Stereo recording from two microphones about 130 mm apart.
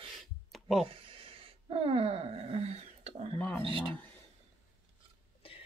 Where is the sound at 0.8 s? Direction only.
45° right (ahead or behind).